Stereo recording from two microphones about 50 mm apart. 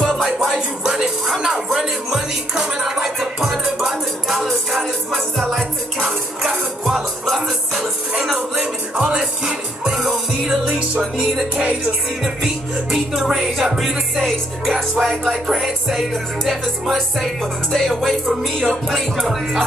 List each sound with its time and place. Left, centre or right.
0.0 s music: centre
0.4 s music: centre
8.9 s music: centre
9.8 s music: centre
10.7 s music: right
11.1 s music: centre
12.9 s music: centre